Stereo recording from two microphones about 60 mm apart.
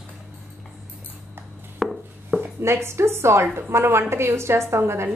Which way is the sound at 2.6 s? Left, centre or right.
Right.